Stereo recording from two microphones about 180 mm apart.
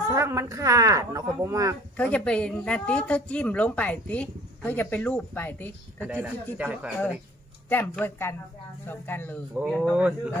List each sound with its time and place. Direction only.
0.1 s speech: 15° right (ahead or behind)
2.0 s a woman's voice: 5° left (ahead or behind)
5.9 s speech: 10° right (ahead or behind)
7.7 s a woman's voice: 10° left (ahead or behind)